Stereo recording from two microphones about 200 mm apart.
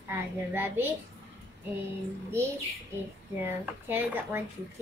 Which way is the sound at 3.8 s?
10° right (ahead or behind).